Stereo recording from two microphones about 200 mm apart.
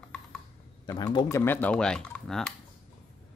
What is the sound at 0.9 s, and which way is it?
Speech, 20° left (ahead or behind).